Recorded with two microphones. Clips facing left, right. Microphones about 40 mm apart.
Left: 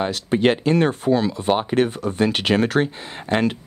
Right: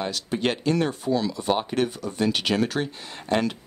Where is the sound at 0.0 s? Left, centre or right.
Left.